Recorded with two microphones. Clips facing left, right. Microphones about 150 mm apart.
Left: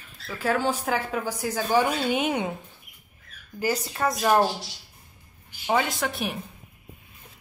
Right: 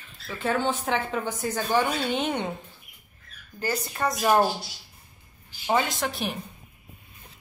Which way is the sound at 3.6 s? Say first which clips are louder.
Left 3 dB; 10° left (ahead or behind).